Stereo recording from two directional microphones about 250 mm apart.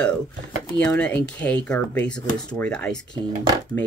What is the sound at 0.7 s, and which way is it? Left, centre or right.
Speech, centre.